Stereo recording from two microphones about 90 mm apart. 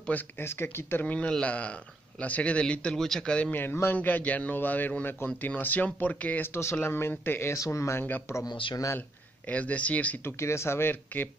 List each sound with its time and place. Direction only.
0.0 s a man's voice: 20° left (ahead or behind)
3.5 s a man's voice: 25° left (ahead or behind)
9.5 s a man's voice: 15° left (ahead or behind)
10.2 s a man's voice: 30° left (ahead or behind)